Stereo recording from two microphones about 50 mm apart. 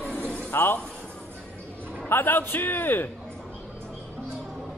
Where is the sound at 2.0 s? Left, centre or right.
Left.